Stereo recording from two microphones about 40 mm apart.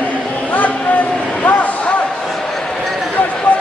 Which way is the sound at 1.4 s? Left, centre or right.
Left.